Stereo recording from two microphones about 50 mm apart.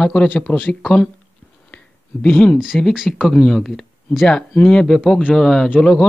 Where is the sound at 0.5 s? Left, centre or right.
Left.